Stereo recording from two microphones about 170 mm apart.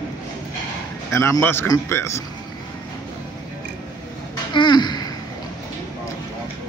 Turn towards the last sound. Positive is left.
turn(degrees=25)  # may be behind; listen again after turning